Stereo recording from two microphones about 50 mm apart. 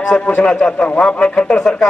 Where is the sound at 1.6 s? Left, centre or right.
Centre.